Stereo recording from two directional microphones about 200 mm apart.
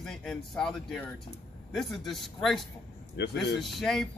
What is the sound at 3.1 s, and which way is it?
Speech, 60° left (ahead or behind).